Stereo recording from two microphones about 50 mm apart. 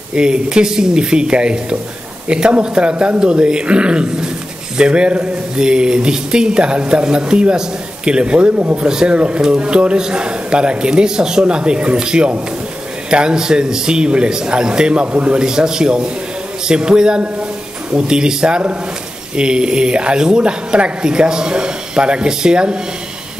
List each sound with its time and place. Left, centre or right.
0.1 s a woman's voice: centre
8.7 s a woman's voice: centre